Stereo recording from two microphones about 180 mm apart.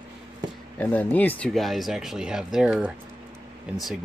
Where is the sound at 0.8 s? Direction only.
10° left (ahead or behind).